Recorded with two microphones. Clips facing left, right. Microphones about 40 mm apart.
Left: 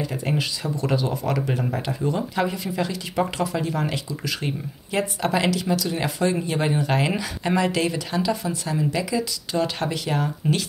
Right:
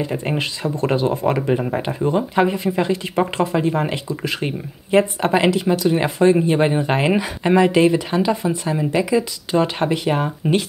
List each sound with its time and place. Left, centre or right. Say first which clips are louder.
0.0 s speech: right 4 dB; right